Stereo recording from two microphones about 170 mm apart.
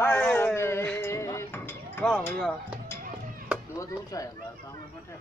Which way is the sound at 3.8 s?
20° left (ahead or behind).